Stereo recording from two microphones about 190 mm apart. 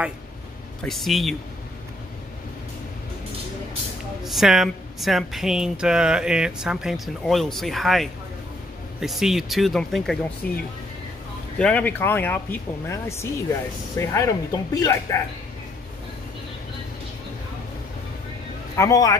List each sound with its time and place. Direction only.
0.8 s speech: centre (ahead or behind)
4.2 s speech: centre (ahead or behind); by 15.1 s 15° left (ahead or behind)
18.8 s speech: 20° left (ahead or behind)